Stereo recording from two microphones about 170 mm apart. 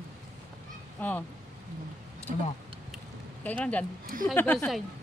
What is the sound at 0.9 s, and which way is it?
Speech, 10° left (ahead or behind).